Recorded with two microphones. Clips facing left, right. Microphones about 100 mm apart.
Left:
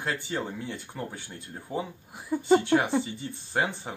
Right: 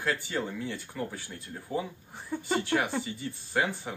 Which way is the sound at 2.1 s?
10° left (ahead or behind).